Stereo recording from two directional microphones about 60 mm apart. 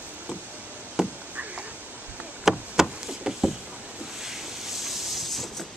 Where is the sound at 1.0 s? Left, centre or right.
Centre.